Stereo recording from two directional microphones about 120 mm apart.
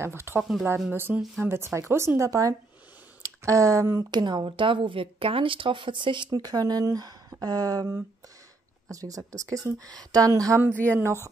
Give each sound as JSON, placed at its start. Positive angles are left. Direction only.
{"t": 0.0, "sound": "a woman's voice", "side_deg": -20}
{"t": 10.7, "sound": "speech", "side_deg": 15}